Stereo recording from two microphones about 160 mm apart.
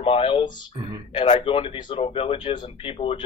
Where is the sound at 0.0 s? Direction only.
35° left (ahead or behind).